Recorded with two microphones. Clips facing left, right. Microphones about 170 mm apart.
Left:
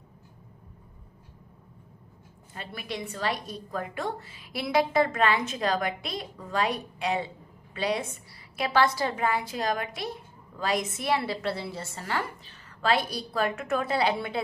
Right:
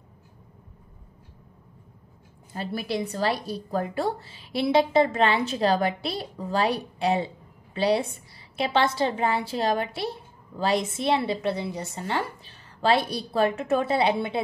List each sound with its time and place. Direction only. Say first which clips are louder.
2.5 s a woman's voice: right 8 dB; 35° right (ahead or behind)